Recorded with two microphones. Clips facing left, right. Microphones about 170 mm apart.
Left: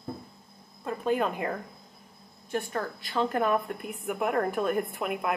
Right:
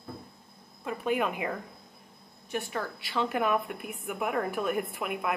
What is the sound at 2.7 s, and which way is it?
Speech, 45° left (ahead or behind).